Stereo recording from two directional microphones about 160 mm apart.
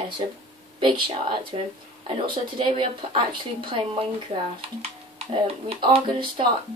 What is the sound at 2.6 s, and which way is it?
Speech, 30° right (ahead or behind).